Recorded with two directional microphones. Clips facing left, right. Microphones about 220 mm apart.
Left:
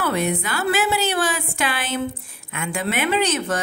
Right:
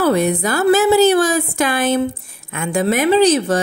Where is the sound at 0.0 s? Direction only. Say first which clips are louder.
Right 7 dB; 40° right (ahead or behind).